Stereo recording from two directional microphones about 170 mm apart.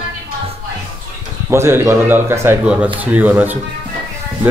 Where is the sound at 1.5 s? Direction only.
15° right (ahead or behind).